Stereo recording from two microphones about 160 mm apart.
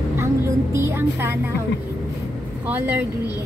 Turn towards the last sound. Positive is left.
turn(degrees=-10)  # may be behind; listen again after turning